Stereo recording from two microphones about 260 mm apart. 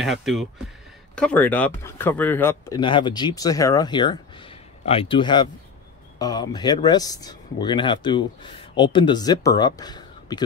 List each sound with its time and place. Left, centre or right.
0.0 s speech: centre